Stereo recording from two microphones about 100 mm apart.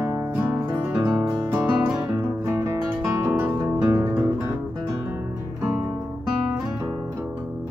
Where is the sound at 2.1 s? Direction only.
25° right (ahead or behind).